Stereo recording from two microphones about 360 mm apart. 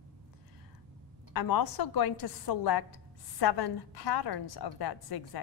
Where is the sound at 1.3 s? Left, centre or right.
Left.